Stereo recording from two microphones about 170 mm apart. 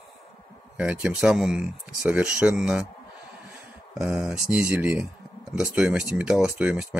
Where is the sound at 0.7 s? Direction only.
10° right (ahead or behind).